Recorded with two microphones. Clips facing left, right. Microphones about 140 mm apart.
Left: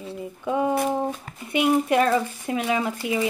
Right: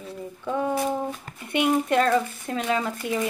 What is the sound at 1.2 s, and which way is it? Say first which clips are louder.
Speech: left 1 dB; 5° left (ahead or behind).